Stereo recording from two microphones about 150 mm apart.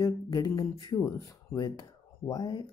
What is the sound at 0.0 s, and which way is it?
Speech, 25° left (ahead or behind).